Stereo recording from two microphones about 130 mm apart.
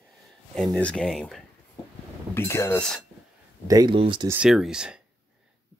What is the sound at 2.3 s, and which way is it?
Speech, 20° left (ahead or behind).